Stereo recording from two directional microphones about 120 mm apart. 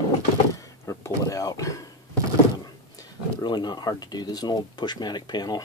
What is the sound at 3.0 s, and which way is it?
Speech, 35° left (ahead or behind).